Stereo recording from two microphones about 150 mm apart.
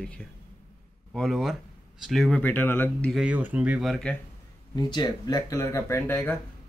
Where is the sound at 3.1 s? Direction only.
5° right (ahead or behind).